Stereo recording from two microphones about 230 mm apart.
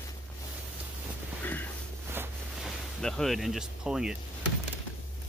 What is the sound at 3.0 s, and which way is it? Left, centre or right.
Speech, centre.